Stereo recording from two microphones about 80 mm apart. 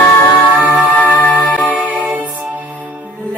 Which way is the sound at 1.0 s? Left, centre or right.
Centre.